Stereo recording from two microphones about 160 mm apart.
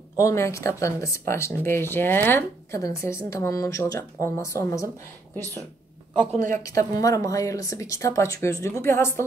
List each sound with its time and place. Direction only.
0.2 s speech: 20° left (ahead or behind)
6.5 s speech: 20° left (ahead or behind)